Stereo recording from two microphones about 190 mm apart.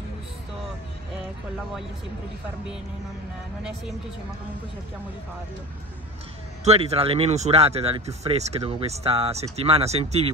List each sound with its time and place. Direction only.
6.6 s speech: 35° right (ahead or behind)